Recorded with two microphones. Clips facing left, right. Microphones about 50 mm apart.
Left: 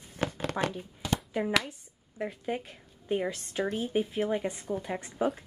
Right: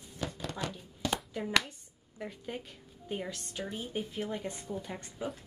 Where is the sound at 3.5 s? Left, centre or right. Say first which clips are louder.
Left 8 dB; left.